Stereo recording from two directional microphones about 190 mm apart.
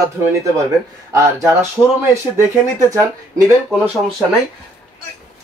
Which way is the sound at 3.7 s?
Centre (ahead or behind).